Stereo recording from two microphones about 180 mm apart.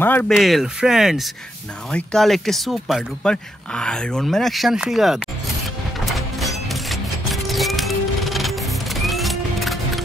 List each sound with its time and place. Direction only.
0.0 s speech: 10° left (ahead or behind)
0.4 s speech: centre (ahead or behind)
6.0 s music: centre (ahead or behind)